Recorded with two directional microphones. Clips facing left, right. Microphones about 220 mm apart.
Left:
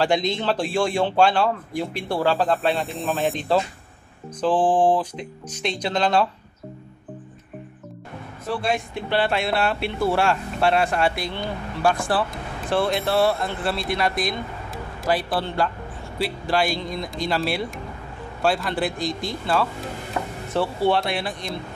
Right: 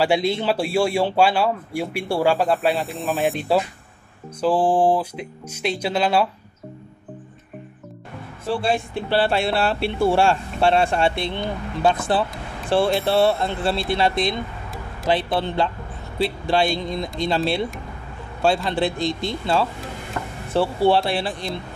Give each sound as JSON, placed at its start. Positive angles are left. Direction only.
{"t": 0.0, "sound": "speech", "side_deg": -10}
{"t": 2.7, "sound": "speech", "side_deg": 0}
{"t": 3.2, "sound": "speech", "side_deg": -10}
{"t": 8.5, "sound": "speech", "side_deg": -30}
{"t": 18.4, "sound": "speech", "side_deg": -25}